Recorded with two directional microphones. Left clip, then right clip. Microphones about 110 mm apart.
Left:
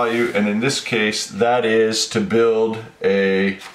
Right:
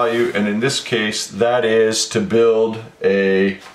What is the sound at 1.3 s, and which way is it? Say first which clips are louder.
Speech: right 2 dB; 15° right (ahead or behind).